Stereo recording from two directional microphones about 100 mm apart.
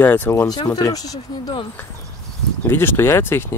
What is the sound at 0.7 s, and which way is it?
Speech, 35° left (ahead or behind).